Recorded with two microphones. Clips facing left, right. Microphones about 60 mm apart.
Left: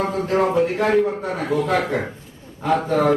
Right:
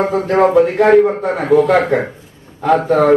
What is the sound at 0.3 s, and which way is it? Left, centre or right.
A man's voice, right.